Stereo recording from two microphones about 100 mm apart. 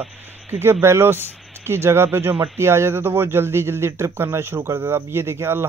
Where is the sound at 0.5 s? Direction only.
25° right (ahead or behind).